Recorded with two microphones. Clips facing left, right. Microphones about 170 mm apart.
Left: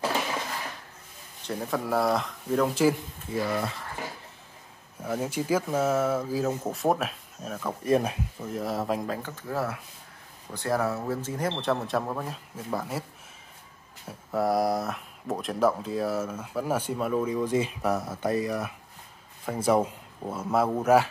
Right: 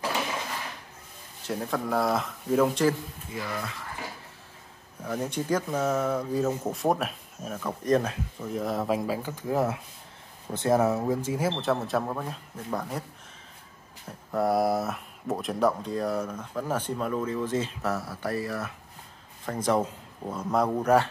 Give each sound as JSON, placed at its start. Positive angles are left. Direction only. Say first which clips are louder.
{"t": 1.5, "sound": "speech", "louder": "even", "side_deg": 0}
{"t": 3.3, "sound": "speech", "louder": "left 6 dB", "side_deg": 35}
{"t": 5.0, "sound": "speech", "louder": "left 1 dB", "side_deg": 5}
{"t": 8.5, "sound": "speech", "louder": "right 2 dB", "side_deg": 0}
{"t": 14.0, "sound": "speech", "louder": "even", "side_deg": 0}